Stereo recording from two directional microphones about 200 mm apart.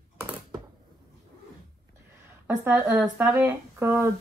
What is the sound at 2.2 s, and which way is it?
Speech, 10° right (ahead or behind).